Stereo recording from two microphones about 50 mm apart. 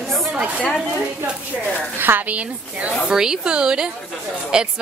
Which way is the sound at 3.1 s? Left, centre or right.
Centre.